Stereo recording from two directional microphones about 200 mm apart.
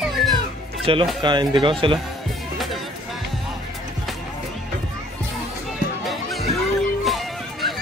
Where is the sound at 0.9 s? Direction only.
25° right (ahead or behind).